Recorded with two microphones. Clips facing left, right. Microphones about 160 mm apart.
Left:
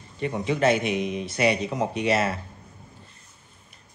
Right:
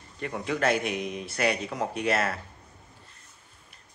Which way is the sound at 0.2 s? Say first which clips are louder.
Left 5 dB; centre (ahead or behind).